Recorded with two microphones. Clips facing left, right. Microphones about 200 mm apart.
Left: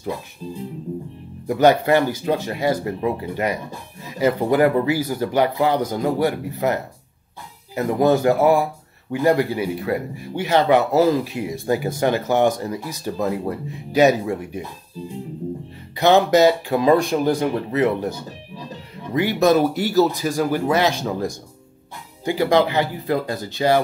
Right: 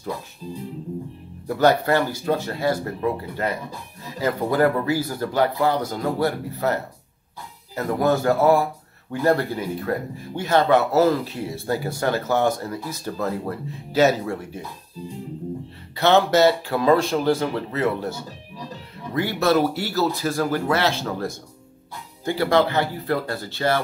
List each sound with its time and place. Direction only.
1.5 s speech: 15° left (ahead or behind)
16.0 s speech: 15° left (ahead or behind)